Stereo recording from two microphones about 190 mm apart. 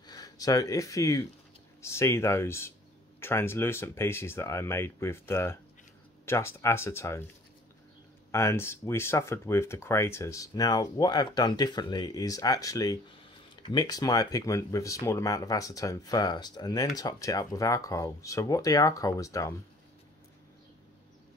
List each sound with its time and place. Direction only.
0.0 s speech: 20° left (ahead or behind)
8.3 s speech: 15° left (ahead or behind)